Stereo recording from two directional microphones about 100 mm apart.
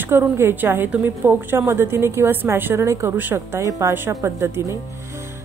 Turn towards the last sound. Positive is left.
turn(degrees=-25)  # may be behind; listen again after turning